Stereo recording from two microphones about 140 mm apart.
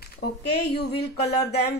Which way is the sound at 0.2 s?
90° left.